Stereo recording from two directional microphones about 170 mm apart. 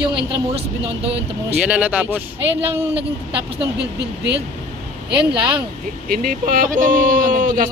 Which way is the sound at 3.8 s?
90° right.